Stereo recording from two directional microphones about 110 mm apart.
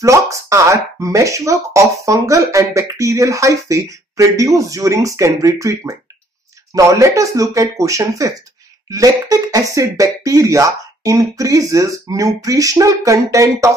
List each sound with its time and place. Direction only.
0.0 s speech: 30° right (ahead or behind)